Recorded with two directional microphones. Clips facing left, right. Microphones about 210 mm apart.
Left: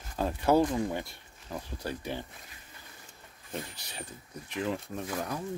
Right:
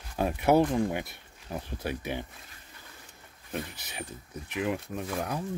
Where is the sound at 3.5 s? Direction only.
15° right (ahead or behind).